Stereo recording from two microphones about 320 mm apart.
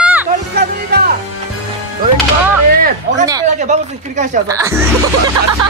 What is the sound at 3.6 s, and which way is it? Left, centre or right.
Speech, right.